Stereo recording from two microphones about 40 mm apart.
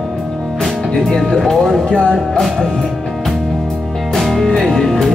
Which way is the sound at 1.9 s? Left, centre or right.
Left.